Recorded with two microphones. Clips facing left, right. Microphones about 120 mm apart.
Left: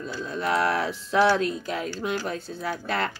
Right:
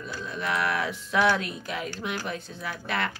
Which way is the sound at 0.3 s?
35° left (ahead or behind).